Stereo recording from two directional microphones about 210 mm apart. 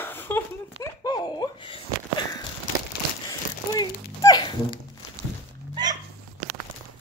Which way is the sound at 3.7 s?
15° left (ahead or behind).